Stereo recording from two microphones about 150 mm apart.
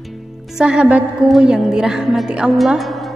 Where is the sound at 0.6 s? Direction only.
5° right (ahead or behind).